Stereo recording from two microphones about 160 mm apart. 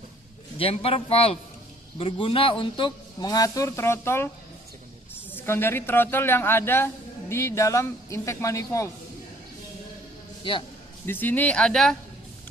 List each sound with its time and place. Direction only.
0.6 s a man's voice: 35° left (ahead or behind); by 4.3 s 15° left (ahead or behind)
5.3 s a woman's voice: 15° left (ahead or behind)
11.1 s a woman's voice: 10° left (ahead or behind)